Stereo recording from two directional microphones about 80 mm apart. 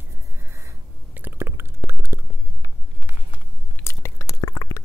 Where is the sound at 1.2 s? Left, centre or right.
Right.